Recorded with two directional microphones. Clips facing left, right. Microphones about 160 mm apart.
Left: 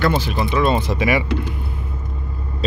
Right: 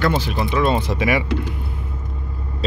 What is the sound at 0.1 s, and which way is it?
Speech, centre (ahead or behind).